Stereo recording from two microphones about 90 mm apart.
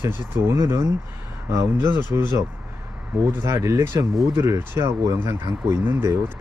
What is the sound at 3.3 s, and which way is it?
Speech, 30° right (ahead or behind).